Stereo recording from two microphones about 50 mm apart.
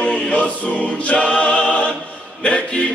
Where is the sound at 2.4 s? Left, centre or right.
Left.